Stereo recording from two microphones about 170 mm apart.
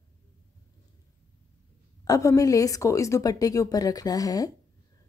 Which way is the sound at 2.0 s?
20° left (ahead or behind).